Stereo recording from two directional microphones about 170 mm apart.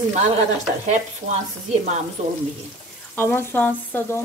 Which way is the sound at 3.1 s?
10° left (ahead or behind).